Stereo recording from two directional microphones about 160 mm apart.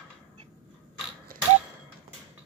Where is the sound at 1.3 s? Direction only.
60° right (ahead or behind).